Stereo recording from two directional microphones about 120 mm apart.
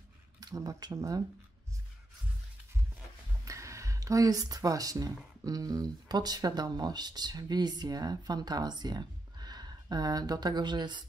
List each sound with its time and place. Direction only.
0.4 s speech: 30° right (ahead or behind)
3.4 s speech: 25° right (ahead or behind)